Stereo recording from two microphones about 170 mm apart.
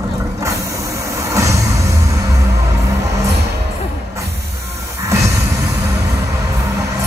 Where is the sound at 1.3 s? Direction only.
20° right (ahead or behind).